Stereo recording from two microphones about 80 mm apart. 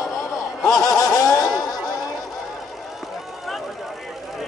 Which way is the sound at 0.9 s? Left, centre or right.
Left.